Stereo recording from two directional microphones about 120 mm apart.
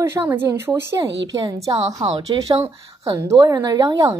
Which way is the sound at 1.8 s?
65° right (ahead or behind).